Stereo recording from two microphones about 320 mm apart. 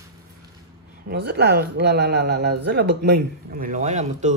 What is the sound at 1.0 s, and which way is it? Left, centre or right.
A man's voice, right.